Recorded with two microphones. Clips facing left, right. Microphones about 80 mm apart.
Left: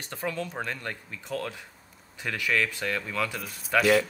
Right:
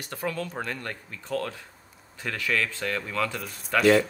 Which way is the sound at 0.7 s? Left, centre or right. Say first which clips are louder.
Even; centre.